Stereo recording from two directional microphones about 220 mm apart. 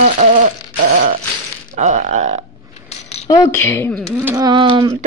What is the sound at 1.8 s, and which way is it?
Speech, 30° right (ahead or behind).